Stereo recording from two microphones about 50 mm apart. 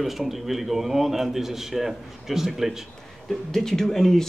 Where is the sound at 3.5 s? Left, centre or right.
Centre.